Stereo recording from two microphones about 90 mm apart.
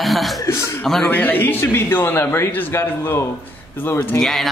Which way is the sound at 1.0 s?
20° left (ahead or behind).